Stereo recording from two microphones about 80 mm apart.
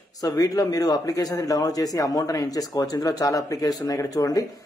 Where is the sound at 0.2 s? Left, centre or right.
Left.